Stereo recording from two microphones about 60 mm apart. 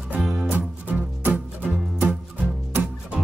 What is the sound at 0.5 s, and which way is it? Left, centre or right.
Music, right.